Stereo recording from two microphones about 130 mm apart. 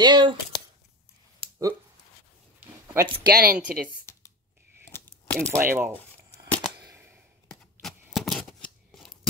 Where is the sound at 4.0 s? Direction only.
20° left (ahead or behind).